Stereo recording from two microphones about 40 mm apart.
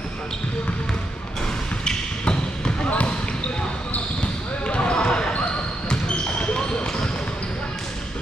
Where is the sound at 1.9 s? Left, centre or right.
Left.